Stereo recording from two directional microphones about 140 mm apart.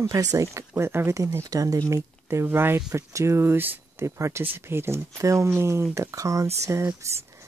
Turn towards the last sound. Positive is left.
turn(degrees=-20)  # may be behind; listen again after turning